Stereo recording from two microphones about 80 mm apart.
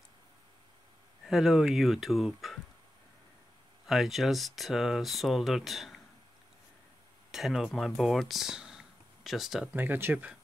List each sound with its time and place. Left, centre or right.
1.2 s speech: centre
3.8 s speech: centre
7.2 s speech: centre
9.8 s speech: right